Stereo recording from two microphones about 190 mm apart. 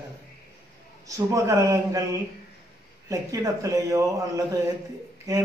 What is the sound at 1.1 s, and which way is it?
Speech, 15° right (ahead or behind).